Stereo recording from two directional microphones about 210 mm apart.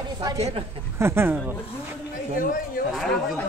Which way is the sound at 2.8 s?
Centre (ahead or behind).